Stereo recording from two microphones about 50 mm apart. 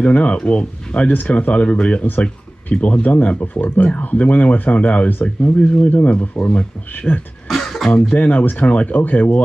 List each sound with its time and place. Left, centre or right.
0.0 s speech: left
7.4 s a sound: centre
8.1 s speech: left